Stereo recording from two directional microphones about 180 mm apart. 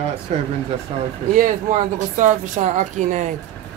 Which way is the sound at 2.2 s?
40° right (ahead or behind).